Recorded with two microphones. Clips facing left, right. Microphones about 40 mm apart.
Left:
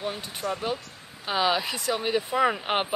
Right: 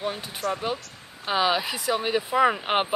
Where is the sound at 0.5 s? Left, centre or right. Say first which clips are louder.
Right 2 dB; centre.